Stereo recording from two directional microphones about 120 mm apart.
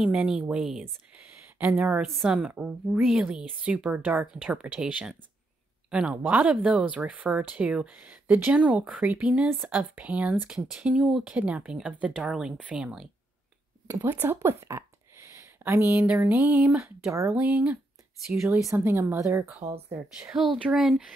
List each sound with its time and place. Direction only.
0.0 s speech: 5° right (ahead or behind)
2.0 s speech: centre (ahead or behind)
13.8 s speech: 20° right (ahead or behind)
18.3 s speech: 25° right (ahead or behind)
19.9 s speech: 10° right (ahead or behind)